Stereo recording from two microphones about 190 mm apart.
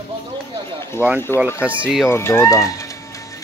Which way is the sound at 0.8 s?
15° left (ahead or behind).